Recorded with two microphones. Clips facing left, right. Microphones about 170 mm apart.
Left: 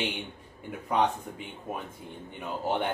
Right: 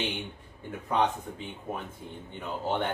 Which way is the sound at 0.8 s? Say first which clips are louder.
Left 1 dB; 10° left (ahead or behind).